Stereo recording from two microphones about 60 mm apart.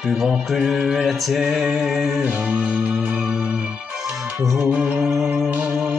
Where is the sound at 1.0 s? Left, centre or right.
Centre.